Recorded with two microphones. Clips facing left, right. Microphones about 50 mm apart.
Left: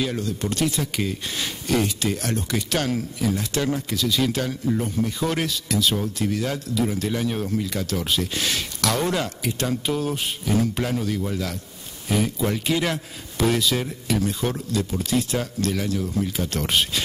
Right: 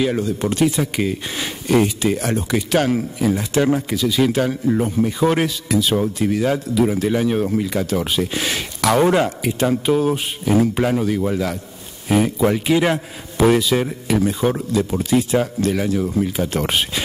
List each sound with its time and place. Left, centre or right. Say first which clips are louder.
0.0 s speech: right 6 dB; centre